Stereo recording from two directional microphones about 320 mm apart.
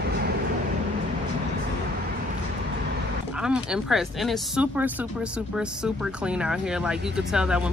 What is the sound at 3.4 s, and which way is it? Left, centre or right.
Speech, centre.